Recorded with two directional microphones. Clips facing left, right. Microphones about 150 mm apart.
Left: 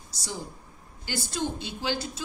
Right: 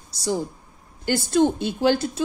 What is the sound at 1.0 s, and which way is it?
A woman's voice, 55° right (ahead or behind).